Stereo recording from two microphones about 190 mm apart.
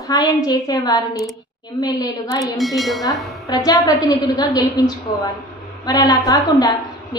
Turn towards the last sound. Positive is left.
turn(degrees=20)  # may be behind; listen again after turning